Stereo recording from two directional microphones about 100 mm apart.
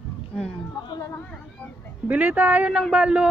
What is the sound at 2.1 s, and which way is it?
Speech, 15° right (ahead or behind).